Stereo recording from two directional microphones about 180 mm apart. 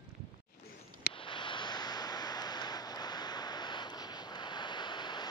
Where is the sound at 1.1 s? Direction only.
25° left (ahead or behind).